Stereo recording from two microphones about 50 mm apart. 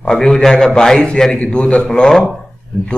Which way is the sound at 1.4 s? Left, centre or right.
Left.